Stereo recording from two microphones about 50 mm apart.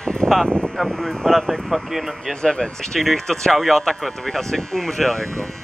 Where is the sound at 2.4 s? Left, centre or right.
Centre.